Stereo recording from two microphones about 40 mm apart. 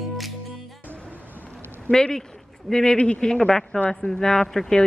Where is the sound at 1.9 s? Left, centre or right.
Centre.